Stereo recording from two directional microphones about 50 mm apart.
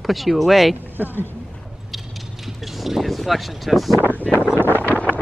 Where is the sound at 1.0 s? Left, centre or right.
Right.